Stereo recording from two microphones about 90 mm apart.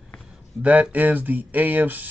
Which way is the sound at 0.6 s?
15° right (ahead or behind).